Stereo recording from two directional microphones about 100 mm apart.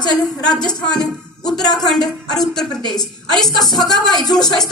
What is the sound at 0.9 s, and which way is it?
Speech, 40° left (ahead or behind).